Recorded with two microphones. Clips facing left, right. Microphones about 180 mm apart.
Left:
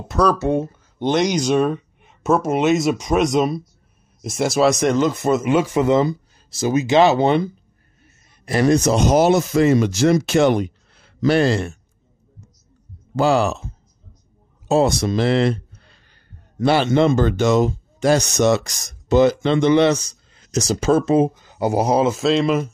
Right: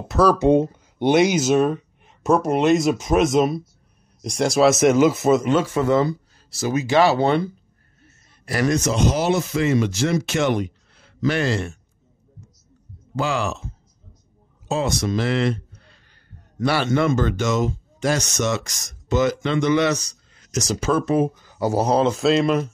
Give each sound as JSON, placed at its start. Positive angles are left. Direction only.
{"t": 0.1, "sound": "speech", "side_deg": -5}
{"t": 0.4, "sound": "speech", "side_deg": -20}
{"t": 5.5, "sound": "a man's voice", "side_deg": 15}
{"t": 13.1, "sound": "speech", "side_deg": 35}
{"t": 14.7, "sound": "speech", "side_deg": 35}